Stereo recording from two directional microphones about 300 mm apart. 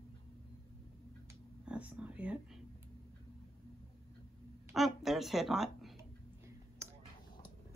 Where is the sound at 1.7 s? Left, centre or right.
Centre.